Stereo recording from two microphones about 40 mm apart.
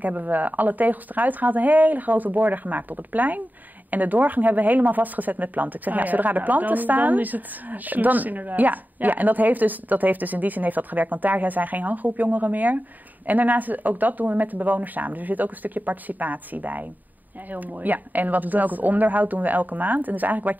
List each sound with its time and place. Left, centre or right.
0.0 s speech: right